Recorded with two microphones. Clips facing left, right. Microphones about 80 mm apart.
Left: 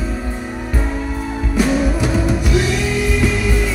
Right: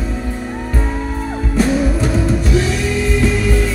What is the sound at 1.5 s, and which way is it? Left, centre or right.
Music, centre.